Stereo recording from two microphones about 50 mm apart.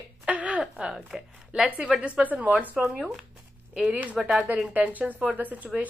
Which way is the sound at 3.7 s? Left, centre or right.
Right.